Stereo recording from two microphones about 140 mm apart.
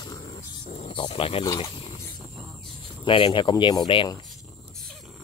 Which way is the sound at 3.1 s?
40° left (ahead or behind).